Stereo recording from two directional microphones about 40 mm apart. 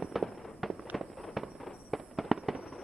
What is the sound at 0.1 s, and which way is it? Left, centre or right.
Fireworks, centre.